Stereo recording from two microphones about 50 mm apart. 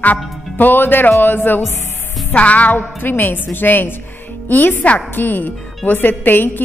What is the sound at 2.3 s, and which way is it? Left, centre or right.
A woman's voice, left.